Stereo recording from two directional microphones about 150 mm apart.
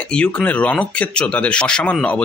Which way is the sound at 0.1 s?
5° left (ahead or behind).